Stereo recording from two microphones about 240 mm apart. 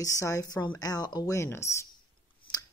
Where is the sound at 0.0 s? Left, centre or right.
Centre.